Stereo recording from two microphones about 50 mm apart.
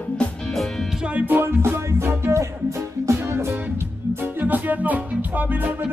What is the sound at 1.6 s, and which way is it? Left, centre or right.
Music, right.